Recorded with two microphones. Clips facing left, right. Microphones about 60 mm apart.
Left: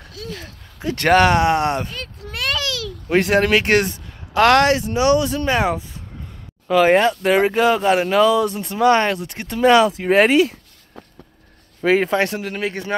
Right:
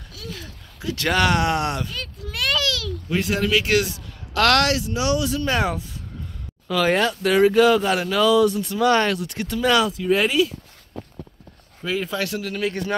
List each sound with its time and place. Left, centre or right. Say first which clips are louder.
0.1 s speech: left 4 dB; left
2.3 s a sound: even; left
3.1 s speech: left 6 dB; left
4.3 s speech: left 5 dB; left
5.5 s speech: left 4 dB; centre; by 9.9 s left
9.9 s speech: left 5 dB; left
11.8 s speech: left 8 dB; left
12.4 s speech: even; left